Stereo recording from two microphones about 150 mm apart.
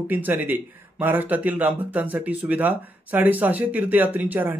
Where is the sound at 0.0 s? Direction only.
10° right (ahead or behind).